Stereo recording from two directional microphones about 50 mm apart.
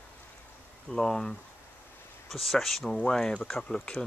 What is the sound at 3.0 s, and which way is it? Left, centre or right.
Speech, centre.